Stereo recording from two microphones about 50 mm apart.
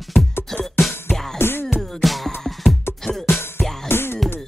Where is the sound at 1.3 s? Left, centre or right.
Left.